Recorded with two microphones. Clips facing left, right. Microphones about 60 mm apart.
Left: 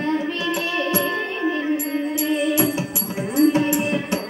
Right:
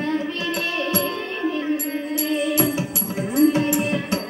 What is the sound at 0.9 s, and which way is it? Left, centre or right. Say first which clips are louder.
Music: left 2 dB; centre.